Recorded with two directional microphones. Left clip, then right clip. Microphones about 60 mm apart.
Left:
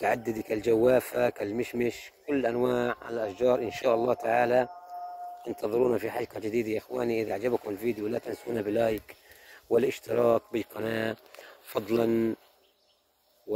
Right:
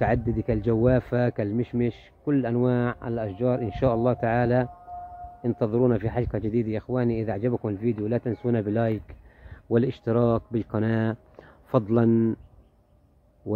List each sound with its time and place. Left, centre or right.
0.1 s speech: left
1.2 s speech: left; by 10.7 s centre
10.8 s speech: left